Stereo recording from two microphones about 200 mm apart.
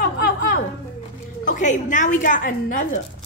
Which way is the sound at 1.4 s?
40° left (ahead or behind).